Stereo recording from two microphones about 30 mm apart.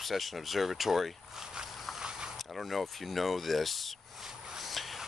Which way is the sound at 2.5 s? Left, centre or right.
Centre.